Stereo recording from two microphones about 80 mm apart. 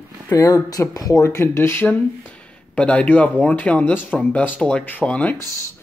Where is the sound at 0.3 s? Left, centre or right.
Left.